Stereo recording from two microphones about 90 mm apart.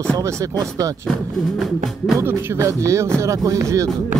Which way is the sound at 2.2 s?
30° right (ahead or behind).